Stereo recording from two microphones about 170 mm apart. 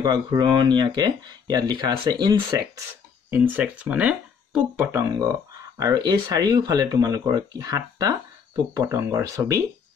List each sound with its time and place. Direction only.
0.0 s speech: 25° right (ahead or behind)
3.3 s speech: 10° right (ahead or behind)
5.0 s speech: 20° right (ahead or behind)